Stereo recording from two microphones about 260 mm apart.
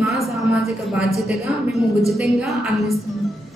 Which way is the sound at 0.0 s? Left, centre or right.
Centre.